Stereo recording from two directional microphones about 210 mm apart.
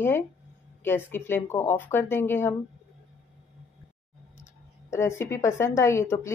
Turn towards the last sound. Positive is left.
turn(degrees=15)  # may be behind; listen again after turning